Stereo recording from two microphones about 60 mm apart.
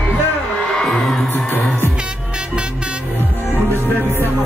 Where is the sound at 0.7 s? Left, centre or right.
Centre.